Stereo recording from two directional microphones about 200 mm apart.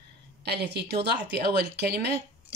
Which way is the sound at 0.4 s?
55° right (ahead or behind).